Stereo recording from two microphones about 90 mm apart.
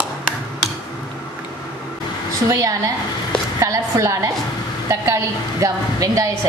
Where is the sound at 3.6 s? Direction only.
35° right (ahead or behind).